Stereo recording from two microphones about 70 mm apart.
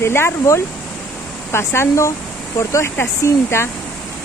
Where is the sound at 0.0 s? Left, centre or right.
Left.